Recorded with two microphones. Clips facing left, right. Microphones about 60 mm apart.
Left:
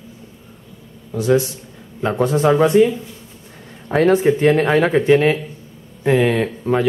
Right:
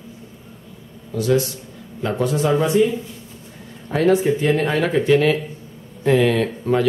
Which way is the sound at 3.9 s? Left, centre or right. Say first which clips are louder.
Left 3 dB; left.